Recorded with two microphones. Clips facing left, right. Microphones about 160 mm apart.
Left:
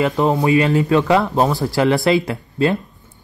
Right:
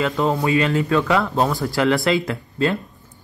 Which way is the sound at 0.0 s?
20° left (ahead or behind).